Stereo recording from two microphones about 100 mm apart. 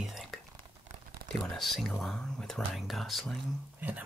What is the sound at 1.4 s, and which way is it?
Speech, centre (ahead or behind).